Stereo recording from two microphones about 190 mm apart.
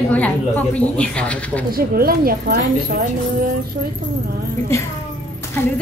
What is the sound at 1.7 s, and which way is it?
Speech, 50° right (ahead or behind).